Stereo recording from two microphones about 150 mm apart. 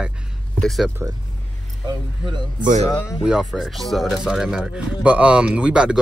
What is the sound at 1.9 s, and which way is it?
Speech, 30° right (ahead or behind).